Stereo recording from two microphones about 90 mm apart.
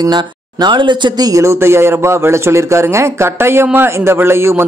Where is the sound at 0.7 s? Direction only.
60° right (ahead or behind).